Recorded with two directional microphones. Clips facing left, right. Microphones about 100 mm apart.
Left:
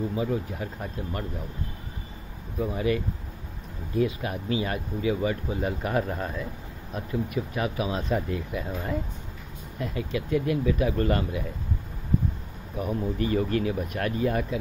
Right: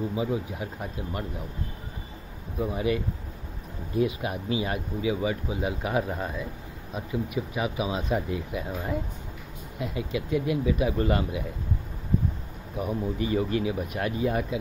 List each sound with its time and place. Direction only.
0.1 s speech: 15° right (ahead or behind)
2.6 s speech: 15° right (ahead or behind)
12.8 s speech: 10° right (ahead or behind)